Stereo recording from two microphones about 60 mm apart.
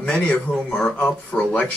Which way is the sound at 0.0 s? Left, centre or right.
Left.